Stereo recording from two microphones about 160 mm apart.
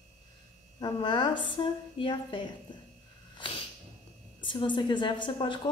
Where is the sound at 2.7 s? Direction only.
30° left (ahead or behind).